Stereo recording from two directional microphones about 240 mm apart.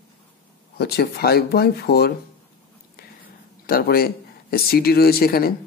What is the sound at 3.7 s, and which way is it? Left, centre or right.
Speech, left.